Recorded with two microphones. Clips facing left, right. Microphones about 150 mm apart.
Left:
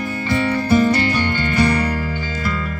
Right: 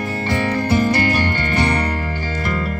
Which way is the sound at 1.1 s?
40° right (ahead or behind).